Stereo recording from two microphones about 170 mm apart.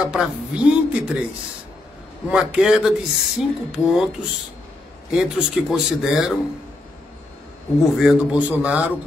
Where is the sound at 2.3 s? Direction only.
5° right (ahead or behind).